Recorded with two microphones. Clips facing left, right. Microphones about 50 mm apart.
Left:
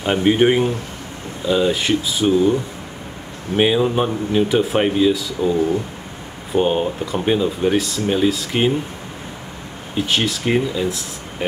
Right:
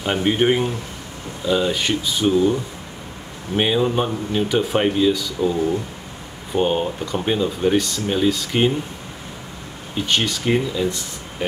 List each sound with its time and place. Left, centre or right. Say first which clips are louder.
0.0 s speech: left 3 dB; centre
9.9 s speech: left 1 dB; centre